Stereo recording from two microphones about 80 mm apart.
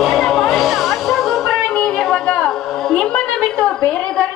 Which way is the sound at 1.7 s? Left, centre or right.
Centre.